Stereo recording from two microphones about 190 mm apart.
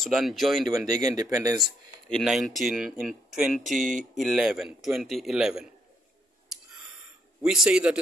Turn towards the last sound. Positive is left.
turn(degrees=-5)  # may be behind; listen again after turning